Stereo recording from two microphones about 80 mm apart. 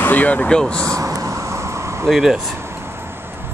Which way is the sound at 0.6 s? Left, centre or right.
Centre.